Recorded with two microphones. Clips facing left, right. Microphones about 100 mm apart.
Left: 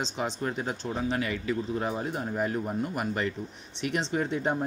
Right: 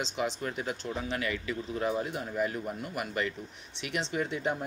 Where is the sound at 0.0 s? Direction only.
30° left (ahead or behind).